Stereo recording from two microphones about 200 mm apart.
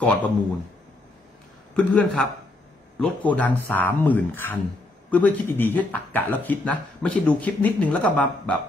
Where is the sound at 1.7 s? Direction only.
5° left (ahead or behind).